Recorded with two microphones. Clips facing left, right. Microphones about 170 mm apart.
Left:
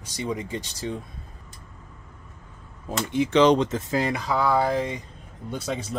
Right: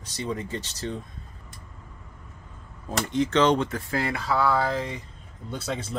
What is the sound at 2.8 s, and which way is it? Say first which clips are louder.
Speech: left 1 dB; 10° left (ahead or behind).